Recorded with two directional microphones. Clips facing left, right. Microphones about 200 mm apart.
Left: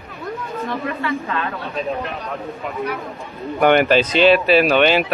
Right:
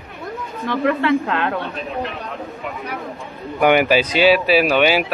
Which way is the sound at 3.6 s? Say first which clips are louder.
Left 1 dB; 10° right (ahead or behind).